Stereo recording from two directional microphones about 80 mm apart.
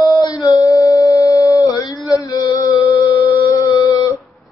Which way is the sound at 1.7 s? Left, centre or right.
Left.